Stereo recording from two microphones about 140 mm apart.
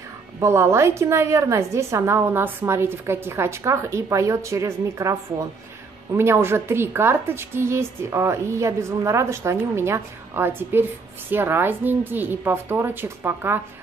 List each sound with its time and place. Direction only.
0.4 s a woman's voice: 20° right (ahead or behind)